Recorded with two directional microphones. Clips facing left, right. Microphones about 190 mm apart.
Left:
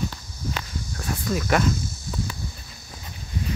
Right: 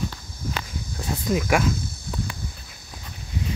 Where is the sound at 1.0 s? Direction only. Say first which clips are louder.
Right 3 dB; 20° right (ahead or behind).